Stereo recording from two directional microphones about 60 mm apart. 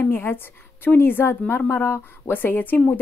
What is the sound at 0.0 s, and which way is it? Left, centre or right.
A woman's voice, left.